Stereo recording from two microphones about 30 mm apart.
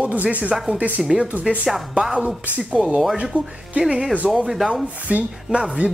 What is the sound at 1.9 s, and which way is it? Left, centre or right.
Speech, right.